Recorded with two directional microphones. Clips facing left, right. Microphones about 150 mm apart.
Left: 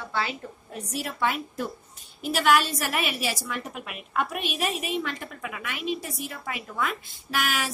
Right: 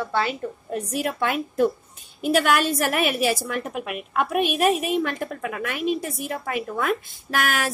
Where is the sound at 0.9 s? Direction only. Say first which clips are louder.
Right 3 dB; 55° right (ahead or behind).